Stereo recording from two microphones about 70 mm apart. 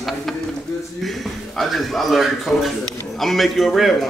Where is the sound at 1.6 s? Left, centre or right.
Centre.